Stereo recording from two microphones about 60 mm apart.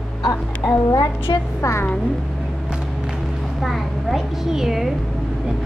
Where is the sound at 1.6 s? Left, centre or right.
Left.